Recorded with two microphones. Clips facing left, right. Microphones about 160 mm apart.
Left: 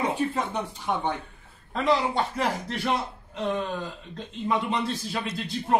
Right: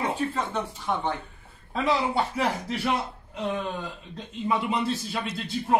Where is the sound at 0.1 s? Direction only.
15° left (ahead or behind).